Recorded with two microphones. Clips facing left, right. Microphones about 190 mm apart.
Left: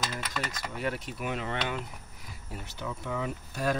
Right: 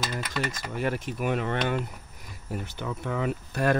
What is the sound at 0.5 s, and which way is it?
Speech, 45° right (ahead or behind).